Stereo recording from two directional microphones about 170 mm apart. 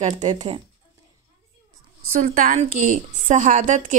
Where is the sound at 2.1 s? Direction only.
50° right (ahead or behind).